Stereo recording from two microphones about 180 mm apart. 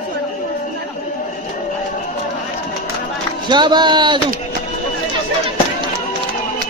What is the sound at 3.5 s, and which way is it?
Speech, 25° right (ahead or behind).